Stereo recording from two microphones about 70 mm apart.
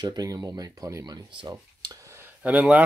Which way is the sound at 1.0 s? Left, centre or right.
Right.